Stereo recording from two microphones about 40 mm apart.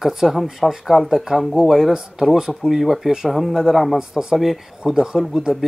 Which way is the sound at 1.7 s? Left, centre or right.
Centre.